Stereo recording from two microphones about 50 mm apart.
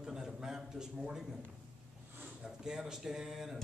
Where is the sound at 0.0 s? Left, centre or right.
Centre.